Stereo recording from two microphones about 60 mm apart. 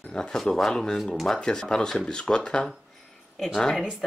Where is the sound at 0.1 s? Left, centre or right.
Centre.